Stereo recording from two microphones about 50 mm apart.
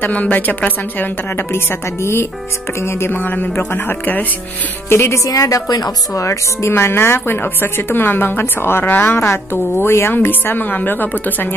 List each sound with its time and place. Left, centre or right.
0.0 s a woman's voice: left
2.8 s speech: left
3.1 s a woman's voice: left
4.8 s speech: left
6.1 s speech: left
6.7 s a woman's voice: left
10.1 s a woman's voice: left